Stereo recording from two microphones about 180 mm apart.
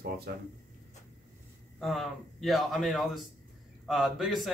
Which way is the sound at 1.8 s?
Centre (ahead or behind).